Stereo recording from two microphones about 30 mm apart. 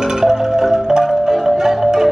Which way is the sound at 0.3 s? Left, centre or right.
Right.